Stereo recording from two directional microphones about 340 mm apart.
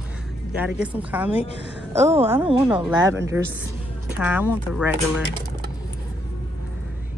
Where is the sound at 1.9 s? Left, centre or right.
Centre.